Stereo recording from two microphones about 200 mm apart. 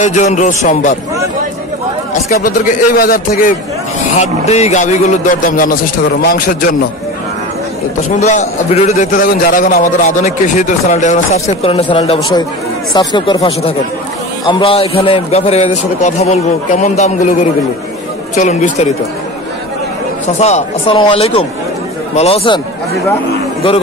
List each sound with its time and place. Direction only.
0.0 s a man's voice: 35° left (ahead or behind)
3.0 s a man's voice: 45° left (ahead or behind)
4.2 s a man's voice: 35° left (ahead or behind)
8.2 s a man's voice: 35° left (ahead or behind)
20.3 s speech: 35° left (ahead or behind)